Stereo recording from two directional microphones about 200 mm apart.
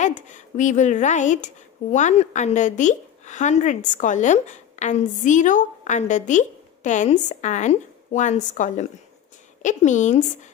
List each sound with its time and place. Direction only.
0.0 s a woman's voice: 40° left (ahead or behind)